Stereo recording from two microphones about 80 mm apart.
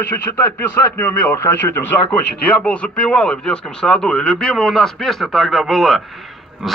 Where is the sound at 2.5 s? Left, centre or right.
Centre.